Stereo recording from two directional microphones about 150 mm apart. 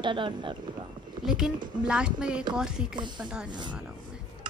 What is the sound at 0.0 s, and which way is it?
Speech, 30° right (ahead or behind).